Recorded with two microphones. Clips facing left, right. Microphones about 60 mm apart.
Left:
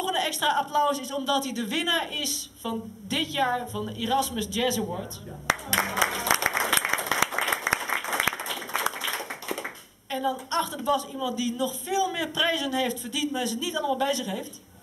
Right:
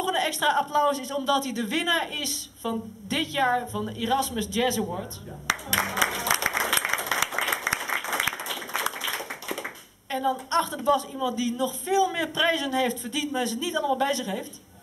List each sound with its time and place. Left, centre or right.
0.0 s a woman's voice: right
5.7 s music: centre
6.0 s applause: centre
8.8 s a sound: centre
10.5 s a man's voice: right